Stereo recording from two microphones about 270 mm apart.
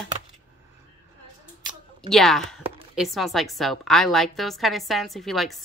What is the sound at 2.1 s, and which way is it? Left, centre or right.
A woman's voice, centre.